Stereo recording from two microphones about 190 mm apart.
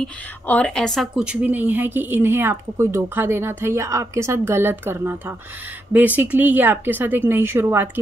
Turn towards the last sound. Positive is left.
turn(degrees=-15)  # may be behind; listen again after turning